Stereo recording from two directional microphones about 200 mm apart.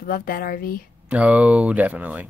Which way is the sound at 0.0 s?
45° left (ahead or behind).